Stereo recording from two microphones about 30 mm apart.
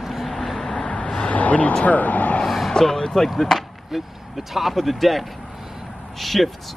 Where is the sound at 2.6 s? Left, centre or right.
Centre.